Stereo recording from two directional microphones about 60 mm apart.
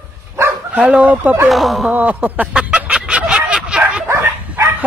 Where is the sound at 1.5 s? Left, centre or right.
Centre.